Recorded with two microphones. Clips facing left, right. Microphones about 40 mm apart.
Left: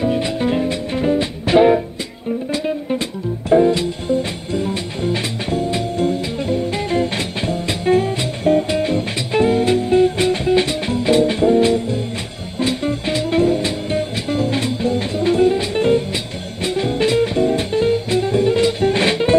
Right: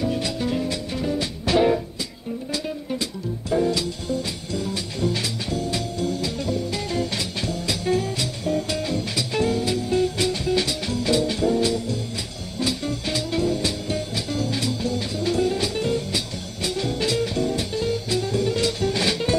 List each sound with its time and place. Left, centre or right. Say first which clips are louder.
0.0 s music: left 6 dB; left